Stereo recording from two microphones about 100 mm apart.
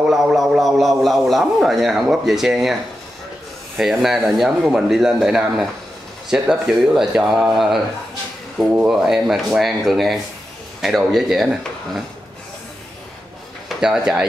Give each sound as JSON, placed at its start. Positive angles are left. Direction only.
{"t": 0.0, "sound": "a man's voice", "side_deg": -5}
{"t": 13.7, "sound": "speech", "side_deg": -5}